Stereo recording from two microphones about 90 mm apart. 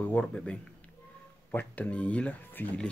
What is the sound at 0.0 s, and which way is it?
Speech, 15° left (ahead or behind).